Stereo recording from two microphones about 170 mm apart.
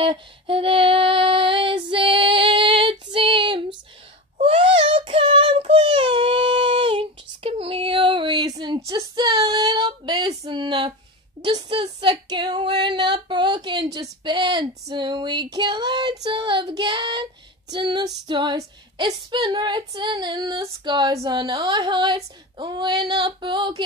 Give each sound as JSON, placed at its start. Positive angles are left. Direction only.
{"t": 0.0, "sound": "female singing", "side_deg": -30}
{"t": 4.4, "sound": "child singing", "side_deg": -35}
{"t": 11.4, "sound": "a woman's voice", "side_deg": -30}